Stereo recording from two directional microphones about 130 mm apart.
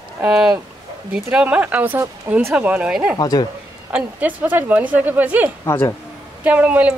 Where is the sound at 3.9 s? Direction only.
10° right (ahead or behind).